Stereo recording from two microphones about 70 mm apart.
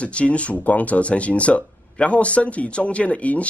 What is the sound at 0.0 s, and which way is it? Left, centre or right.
Speech, centre.